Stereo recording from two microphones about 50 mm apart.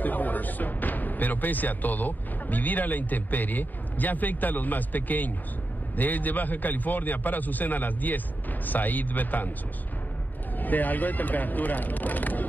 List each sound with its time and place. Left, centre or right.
0.0 s a man's voice: left
10.6 s a man's voice: left